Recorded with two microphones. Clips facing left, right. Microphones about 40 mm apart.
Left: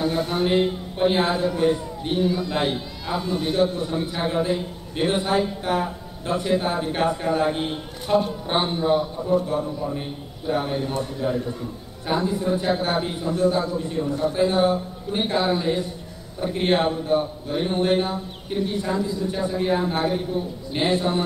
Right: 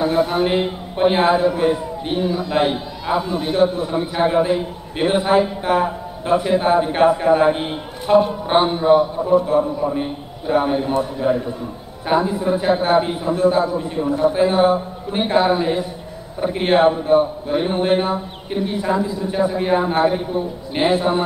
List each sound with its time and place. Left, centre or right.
0.0 s a man's voice: centre